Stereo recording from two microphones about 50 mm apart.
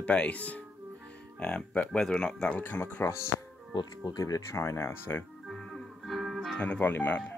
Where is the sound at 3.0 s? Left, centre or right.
Left.